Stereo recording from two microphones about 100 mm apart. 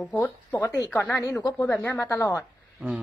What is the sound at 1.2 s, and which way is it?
Speech, 35° left (ahead or behind).